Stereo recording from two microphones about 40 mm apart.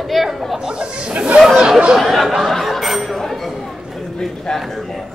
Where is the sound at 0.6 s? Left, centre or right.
Centre.